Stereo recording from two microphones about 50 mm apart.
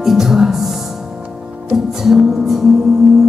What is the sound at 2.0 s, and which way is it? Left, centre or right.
Music, centre.